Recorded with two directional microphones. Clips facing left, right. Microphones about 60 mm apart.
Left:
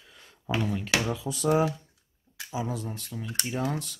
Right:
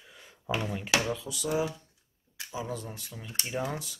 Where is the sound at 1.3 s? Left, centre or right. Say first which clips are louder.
Left 8 dB; left.